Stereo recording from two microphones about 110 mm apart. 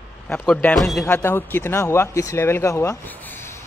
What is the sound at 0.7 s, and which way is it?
Speech, centre (ahead or behind).